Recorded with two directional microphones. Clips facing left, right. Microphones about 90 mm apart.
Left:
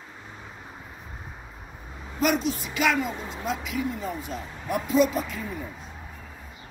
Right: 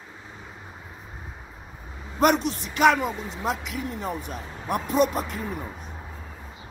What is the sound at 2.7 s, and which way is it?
Speech, 50° right (ahead or behind).